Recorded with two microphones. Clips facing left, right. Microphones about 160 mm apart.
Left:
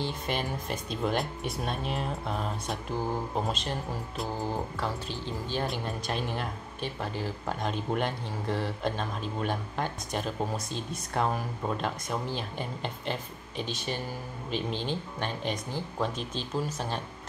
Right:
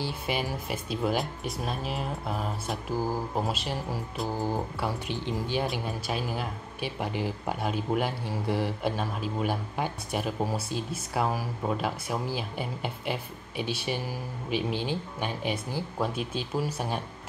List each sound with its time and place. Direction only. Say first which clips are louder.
0.0 s speech: right 1 dB; 5° right (ahead or behind)
5.7 s speech: right 1 dB; 5° right (ahead or behind)